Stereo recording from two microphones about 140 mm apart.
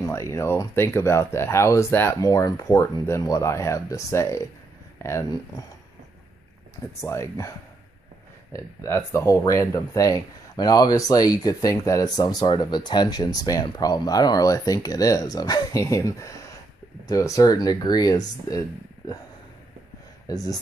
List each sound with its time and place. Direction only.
0.0 s speech: 20° left (ahead or behind)
7.0 s speech: 20° left (ahead or behind)
8.5 s speech: 20° left (ahead or behind)
20.2 s speech: 25° left (ahead or behind)